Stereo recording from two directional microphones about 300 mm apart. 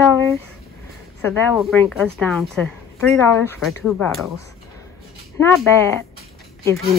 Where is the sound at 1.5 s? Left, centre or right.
Centre.